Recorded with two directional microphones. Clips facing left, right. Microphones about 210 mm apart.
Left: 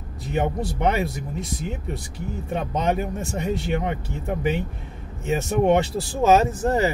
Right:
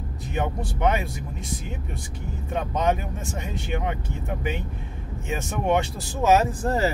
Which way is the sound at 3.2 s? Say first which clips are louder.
Left 6 dB; 40° left (ahead or behind).